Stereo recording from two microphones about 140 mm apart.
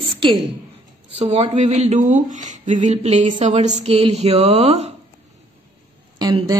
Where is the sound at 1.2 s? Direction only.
50° right (ahead or behind).